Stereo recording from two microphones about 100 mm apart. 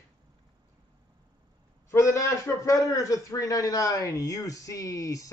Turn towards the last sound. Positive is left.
turn(degrees=35)  # may be behind; listen again after turning